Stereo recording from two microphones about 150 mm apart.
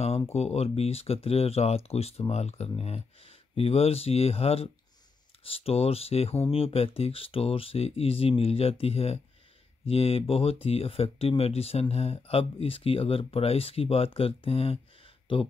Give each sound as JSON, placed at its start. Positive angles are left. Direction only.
{"t": 0.0, "sound": "speech", "side_deg": 45}